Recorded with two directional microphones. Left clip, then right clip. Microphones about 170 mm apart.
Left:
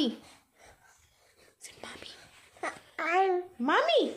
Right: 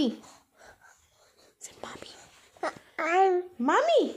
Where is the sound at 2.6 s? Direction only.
35° right (ahead or behind); by 4.0 s 55° right (ahead or behind).